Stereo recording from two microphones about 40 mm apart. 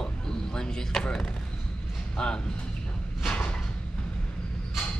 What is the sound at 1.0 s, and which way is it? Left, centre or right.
Speech, left.